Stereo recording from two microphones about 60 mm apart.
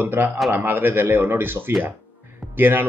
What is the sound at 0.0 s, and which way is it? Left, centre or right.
Speech, right.